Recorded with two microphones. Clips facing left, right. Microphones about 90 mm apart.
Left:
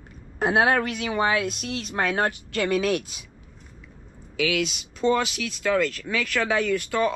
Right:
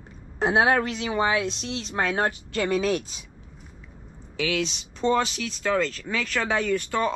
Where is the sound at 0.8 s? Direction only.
30° right (ahead or behind).